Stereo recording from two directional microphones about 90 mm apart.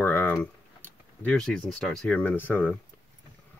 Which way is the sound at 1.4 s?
5° left (ahead or behind).